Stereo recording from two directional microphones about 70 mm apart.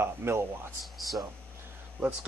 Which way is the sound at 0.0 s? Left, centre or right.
Right.